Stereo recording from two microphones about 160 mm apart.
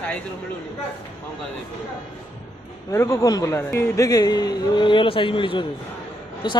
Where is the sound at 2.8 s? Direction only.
20° left (ahead or behind).